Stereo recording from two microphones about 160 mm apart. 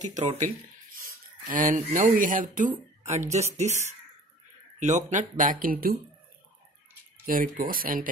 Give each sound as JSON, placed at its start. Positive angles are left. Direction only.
{"t": 0.0, "sound": "speech", "side_deg": -50}
{"t": 4.7, "sound": "speech", "side_deg": -50}
{"t": 7.2, "sound": "speech", "side_deg": -60}